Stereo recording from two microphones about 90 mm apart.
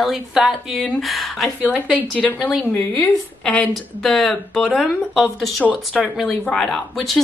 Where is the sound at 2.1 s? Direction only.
10° left (ahead or behind).